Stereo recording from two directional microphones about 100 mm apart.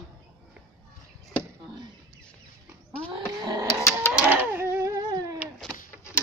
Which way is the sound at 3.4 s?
40° right (ahead or behind).